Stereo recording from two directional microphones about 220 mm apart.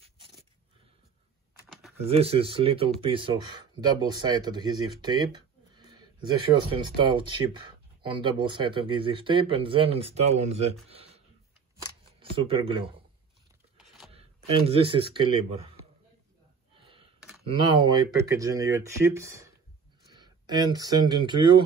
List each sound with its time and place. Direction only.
1.7 s typing: centre (ahead or behind)
2.0 s speech: 25° right (ahead or behind)
13.7 s a sound: centre (ahead or behind)
14.1 s speech: 25° right (ahead or behind)
16.8 s gasp: 25° right (ahead or behind)
17.5 s speech: 20° right (ahead or behind)